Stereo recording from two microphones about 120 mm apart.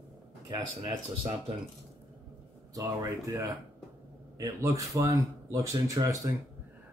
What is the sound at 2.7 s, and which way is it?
Speech, 25° right (ahead or behind).